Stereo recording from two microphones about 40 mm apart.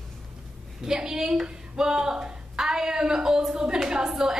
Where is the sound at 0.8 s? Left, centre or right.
Centre.